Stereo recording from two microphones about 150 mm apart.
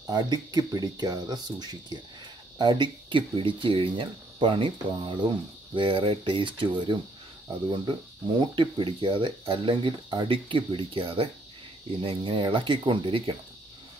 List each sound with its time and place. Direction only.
0.0 s speech: 25° right (ahead or behind)